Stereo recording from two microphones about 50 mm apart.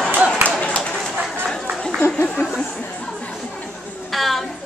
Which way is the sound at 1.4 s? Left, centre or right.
Centre.